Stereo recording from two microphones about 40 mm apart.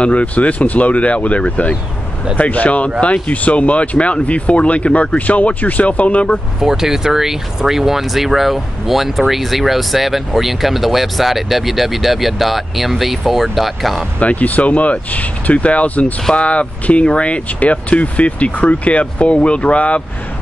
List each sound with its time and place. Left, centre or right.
0.0 s speech: left
6.6 s speech: centre
14.2 s speech: left